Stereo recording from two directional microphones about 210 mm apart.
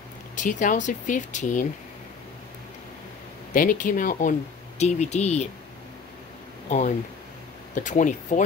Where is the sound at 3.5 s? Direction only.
40° left (ahead or behind).